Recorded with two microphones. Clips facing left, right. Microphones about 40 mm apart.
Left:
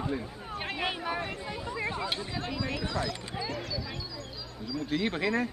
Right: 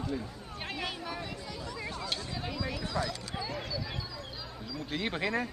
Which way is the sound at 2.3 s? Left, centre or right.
Centre.